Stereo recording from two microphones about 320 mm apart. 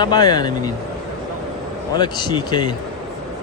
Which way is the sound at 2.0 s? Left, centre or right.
Centre.